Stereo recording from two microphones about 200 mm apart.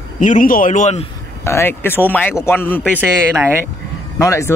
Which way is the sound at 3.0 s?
10° right (ahead or behind).